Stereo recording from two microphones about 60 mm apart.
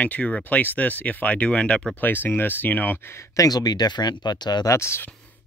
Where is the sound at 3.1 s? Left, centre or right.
Left.